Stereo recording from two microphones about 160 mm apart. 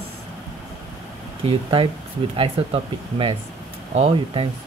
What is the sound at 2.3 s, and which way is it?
Speech, 35° right (ahead or behind).